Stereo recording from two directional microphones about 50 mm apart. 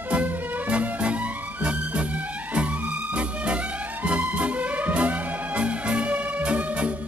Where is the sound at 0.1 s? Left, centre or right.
Right.